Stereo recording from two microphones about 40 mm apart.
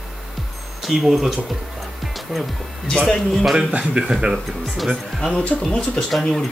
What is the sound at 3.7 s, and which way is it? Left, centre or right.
Speech, right.